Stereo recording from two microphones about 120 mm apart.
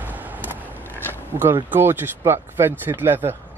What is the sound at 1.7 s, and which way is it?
Speech, 15° right (ahead or behind).